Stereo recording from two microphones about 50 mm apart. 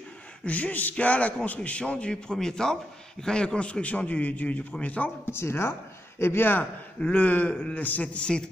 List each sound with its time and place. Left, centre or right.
0.5 s a man's voice: left
5.2 s speech: left
7.2 s a man's voice: left; by 8.5 s centre